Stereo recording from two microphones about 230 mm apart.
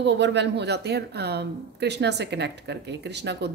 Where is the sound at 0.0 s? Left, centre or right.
Right.